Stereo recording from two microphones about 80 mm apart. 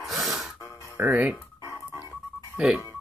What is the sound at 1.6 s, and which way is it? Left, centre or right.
Music, right.